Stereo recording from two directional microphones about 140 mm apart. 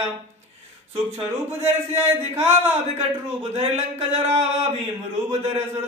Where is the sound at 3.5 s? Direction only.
50° right (ahead or behind).